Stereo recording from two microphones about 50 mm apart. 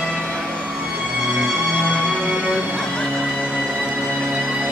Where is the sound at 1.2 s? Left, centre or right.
Centre.